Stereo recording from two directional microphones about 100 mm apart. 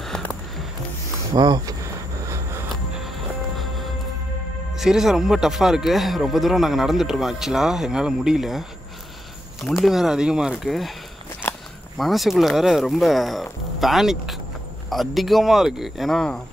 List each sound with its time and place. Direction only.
0.1 s a sound: 5° left (ahead or behind)
1.3 s speech: 45° right (ahead or behind)
2.2 s vehicle: 30° right (ahead or behind)
2.7 s music: centre (ahead or behind)
4.7 s speech: 5° right (ahead or behind)
9.8 s speech: 5° right (ahead or behind)
12.0 s speech: centre (ahead or behind)